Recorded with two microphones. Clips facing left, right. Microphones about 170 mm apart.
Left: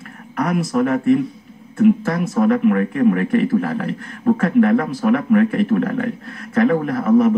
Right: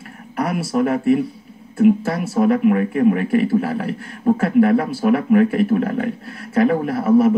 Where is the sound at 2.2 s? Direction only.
30° right (ahead or behind).